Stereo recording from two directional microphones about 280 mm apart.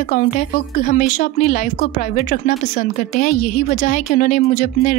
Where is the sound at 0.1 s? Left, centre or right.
Left.